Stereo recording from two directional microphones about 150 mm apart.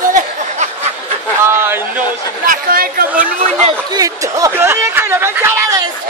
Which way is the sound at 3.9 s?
25° right (ahead or behind).